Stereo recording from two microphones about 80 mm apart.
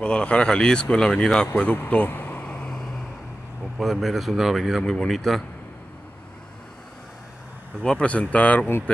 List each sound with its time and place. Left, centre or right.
0.0 s speech: centre
1.6 s vehicle: centre
3.7 s speech: centre
7.8 s speech: centre